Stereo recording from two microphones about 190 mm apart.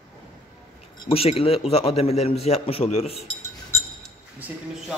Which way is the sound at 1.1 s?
30° left (ahead or behind).